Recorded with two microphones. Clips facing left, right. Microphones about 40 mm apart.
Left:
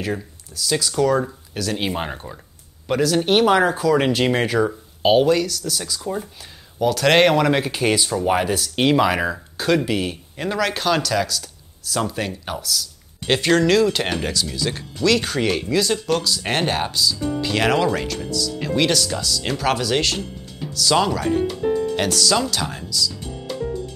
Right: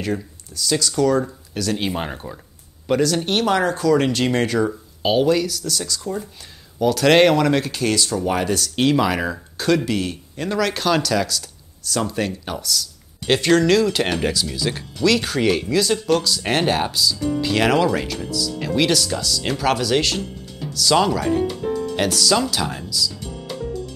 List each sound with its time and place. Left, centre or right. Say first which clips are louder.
0.0 s speech: right 1 dB; centre
21.6 s music: left 3 dB; centre
21.9 s speech: right 1 dB; centre